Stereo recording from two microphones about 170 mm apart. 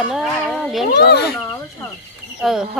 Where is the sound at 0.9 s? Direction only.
70° left (ahead or behind).